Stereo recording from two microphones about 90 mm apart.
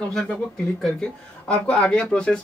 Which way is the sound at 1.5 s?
10° left (ahead or behind).